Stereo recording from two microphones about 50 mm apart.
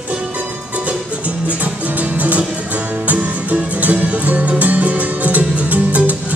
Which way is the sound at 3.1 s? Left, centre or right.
Right.